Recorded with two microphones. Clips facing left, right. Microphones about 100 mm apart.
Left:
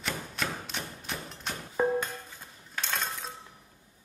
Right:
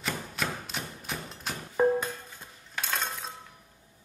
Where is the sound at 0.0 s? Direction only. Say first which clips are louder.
Right 1 dB; centre (ahead or behind).